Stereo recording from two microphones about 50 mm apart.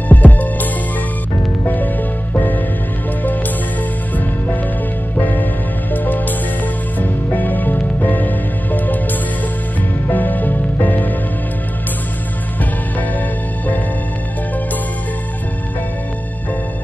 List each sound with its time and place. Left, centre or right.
0.1 s music: left
2.3 s music: left
5.2 s music: left
10.0 s music: left